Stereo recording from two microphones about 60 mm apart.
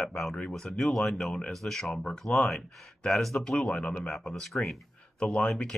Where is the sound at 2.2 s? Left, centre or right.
Left.